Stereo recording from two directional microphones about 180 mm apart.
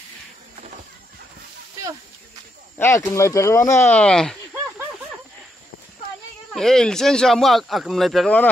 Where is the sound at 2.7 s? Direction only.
15° left (ahead or behind).